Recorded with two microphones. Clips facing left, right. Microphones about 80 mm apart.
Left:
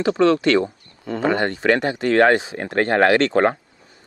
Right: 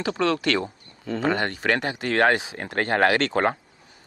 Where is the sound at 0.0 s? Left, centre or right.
Left.